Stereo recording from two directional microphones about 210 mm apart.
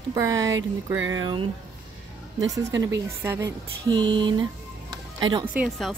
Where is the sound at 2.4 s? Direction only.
15° right (ahead or behind).